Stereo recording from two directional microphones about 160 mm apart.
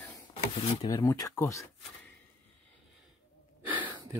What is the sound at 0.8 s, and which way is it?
Speech, 25° left (ahead or behind).